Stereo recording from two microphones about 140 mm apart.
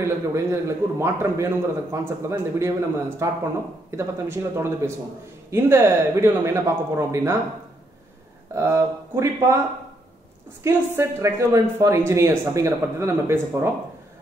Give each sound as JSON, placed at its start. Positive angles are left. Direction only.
{"t": 0.0, "sound": "a man's voice", "side_deg": -20}
{"t": 8.5, "sound": "a man's voice", "side_deg": -20}
{"t": 10.6, "sound": "a man's voice", "side_deg": -20}